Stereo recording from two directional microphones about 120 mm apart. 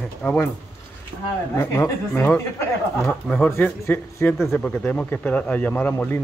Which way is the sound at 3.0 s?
5° left (ahead or behind).